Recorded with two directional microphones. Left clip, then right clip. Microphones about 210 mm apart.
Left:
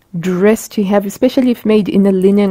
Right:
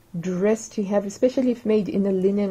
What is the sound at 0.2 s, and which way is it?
Speech, 50° left (ahead or behind).